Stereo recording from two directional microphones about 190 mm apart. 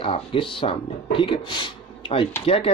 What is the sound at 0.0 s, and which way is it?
Speech, 30° left (ahead or behind).